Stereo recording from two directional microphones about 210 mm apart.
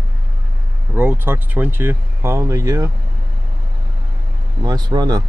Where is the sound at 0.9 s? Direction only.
10° right (ahead or behind).